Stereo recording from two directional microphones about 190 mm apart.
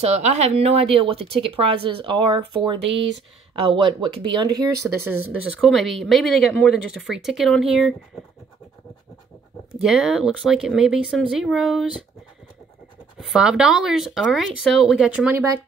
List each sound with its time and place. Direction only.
0.0 s a woman's voice: 35° right (ahead or behind)
2.9 s speech: 75° right (ahead or behind)
3.5 s a woman's voice: 25° right (ahead or behind)
5.0 s speech: 10° right (ahead or behind)
5.7 s speech: centre (ahead or behind)
9.8 s speech: centre (ahead or behind)
13.3 s speech: 5° right (ahead or behind)